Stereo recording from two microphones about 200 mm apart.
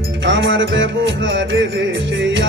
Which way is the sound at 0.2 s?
65° right (ahead or behind).